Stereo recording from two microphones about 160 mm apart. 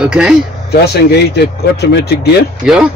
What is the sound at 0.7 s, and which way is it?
Speech, 90° left.